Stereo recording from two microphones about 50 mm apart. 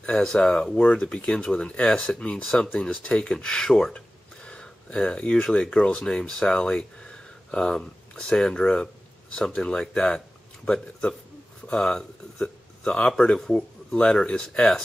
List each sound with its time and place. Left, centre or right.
0.0 s speech: centre
2.8 s speech: left